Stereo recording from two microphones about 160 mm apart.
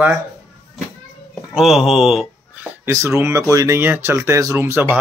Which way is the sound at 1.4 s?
Centre (ahead or behind).